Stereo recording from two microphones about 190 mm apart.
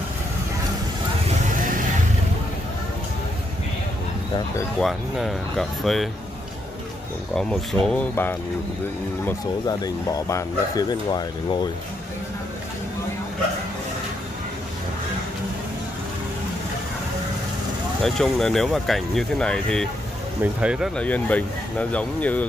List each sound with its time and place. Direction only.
4.7 s speech: centre (ahead or behind)
7.3 s speech: 5° left (ahead or behind); by 11.7 s 20° left (ahead or behind)
18.0 s speech: centre (ahead or behind)